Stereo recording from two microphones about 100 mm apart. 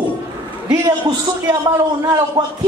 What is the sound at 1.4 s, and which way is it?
Speech, 35° right (ahead or behind).